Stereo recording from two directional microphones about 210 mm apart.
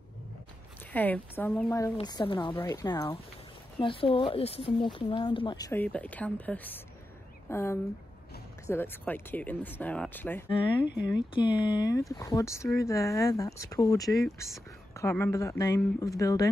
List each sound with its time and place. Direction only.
0.9 s speech: 10° left (ahead or behind)
2.0 s speech: 20° left (ahead or behind)
5.7 s speech: 5° left (ahead or behind)
10.5 s speech: 25° left (ahead or behind)